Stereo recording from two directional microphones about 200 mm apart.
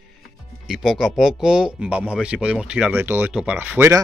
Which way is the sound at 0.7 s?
Centre (ahead or behind).